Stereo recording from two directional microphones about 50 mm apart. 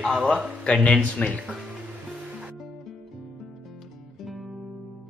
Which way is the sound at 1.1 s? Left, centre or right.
Left.